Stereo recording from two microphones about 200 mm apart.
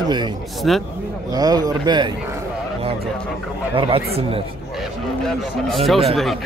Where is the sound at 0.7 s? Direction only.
Centre (ahead or behind).